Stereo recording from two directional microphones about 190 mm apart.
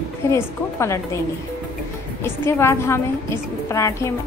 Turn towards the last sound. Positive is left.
turn(degrees=15)  # may be behind; listen again after turning